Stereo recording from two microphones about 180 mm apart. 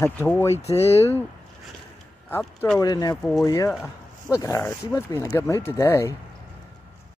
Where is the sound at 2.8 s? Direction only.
20° left (ahead or behind).